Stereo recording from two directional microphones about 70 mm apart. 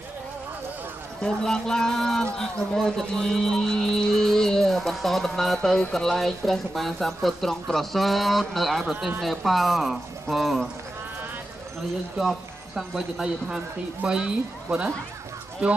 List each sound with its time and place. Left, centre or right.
1.2 s speech: centre
12.2 s speech: centre